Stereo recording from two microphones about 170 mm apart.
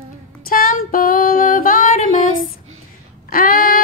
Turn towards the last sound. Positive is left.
turn(degrees=55)  # may be behind; listen again after turning